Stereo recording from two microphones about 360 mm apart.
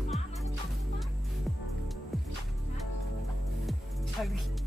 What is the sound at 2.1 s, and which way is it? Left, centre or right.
Music, centre.